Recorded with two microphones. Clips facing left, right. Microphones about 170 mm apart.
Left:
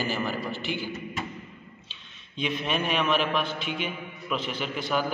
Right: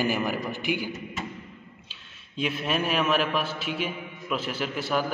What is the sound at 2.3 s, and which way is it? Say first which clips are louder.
A man's voice: right 1 dB; 5° right (ahead or behind).